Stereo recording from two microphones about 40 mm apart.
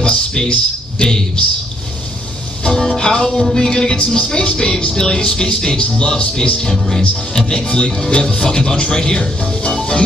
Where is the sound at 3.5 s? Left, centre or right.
Centre.